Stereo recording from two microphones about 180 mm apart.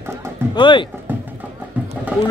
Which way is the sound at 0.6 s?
25° left (ahead or behind).